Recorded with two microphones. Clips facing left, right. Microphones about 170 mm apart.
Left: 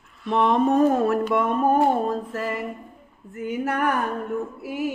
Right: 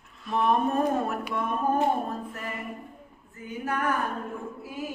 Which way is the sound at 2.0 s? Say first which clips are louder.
Left 8 dB; 90° left.